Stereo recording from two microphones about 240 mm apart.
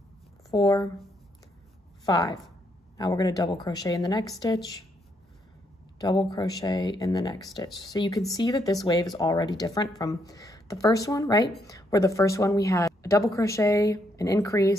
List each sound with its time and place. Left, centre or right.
0.5 s speech: centre
2.0 s speech: centre
5.9 s speech: centre